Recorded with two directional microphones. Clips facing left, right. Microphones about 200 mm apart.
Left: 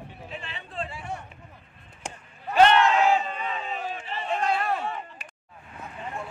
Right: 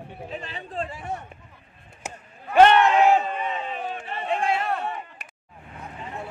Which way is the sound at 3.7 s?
50° right (ahead or behind).